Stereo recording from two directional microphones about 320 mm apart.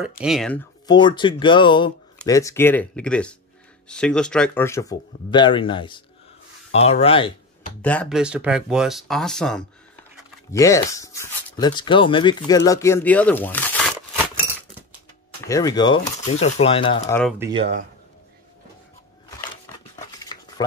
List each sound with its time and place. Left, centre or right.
0.2 s speech: centre
7.8 s speech: centre
15.4 s speech: centre
17.2 s speech: centre
17.5 s speech: centre